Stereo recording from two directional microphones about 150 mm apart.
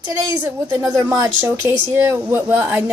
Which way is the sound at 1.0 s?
25° right (ahead or behind).